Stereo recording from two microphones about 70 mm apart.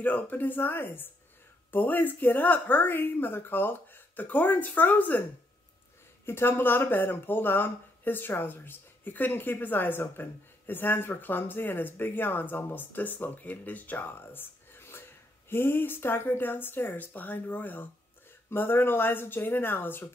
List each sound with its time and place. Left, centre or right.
0.0 s speech: left
6.2 s speech: left